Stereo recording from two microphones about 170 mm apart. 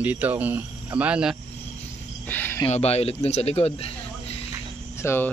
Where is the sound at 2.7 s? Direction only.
40° left (ahead or behind).